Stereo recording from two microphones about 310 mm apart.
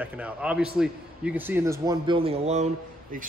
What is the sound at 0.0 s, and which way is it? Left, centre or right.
A man's voice, centre.